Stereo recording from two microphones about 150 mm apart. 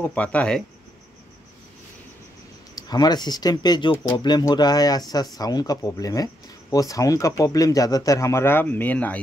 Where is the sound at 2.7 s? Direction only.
25° left (ahead or behind).